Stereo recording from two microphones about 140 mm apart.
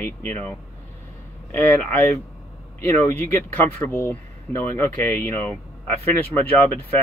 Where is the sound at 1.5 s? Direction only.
15° left (ahead or behind).